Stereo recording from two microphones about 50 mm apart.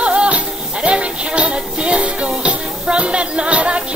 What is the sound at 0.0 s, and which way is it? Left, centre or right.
Music, right.